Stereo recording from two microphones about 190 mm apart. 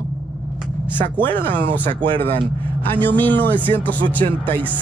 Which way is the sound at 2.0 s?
25° right (ahead or behind).